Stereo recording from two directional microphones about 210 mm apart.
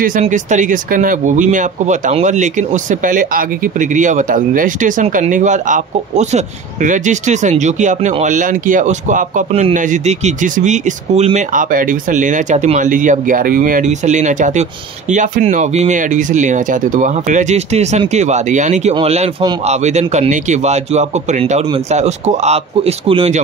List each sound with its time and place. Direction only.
0.0 s speech: 40° right (ahead or behind)